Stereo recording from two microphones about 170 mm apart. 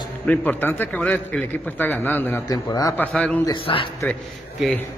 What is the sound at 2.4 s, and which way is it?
Speech, 20° left (ahead or behind).